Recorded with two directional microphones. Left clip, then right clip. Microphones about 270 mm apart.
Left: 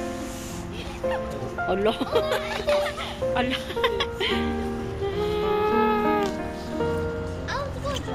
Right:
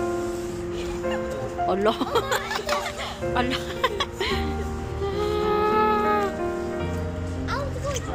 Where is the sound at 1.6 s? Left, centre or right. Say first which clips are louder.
Right 1 dB; centre.